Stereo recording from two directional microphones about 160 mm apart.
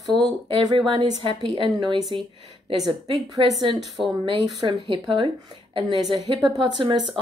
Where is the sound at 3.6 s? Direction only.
30° right (ahead or behind).